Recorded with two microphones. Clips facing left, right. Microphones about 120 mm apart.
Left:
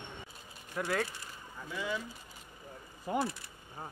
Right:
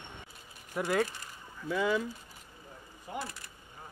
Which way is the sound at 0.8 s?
10° right (ahead or behind).